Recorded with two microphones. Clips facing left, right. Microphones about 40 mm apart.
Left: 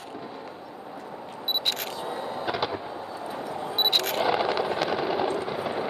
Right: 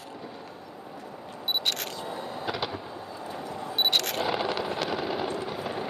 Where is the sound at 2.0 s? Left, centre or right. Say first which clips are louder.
Left 3 dB; left.